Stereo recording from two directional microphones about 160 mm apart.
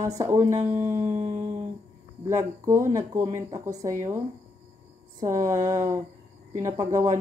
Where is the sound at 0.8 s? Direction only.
20° right (ahead or behind).